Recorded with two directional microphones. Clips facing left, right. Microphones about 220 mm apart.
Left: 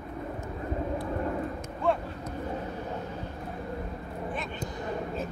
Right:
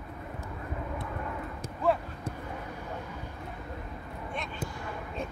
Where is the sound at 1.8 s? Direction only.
5° right (ahead or behind).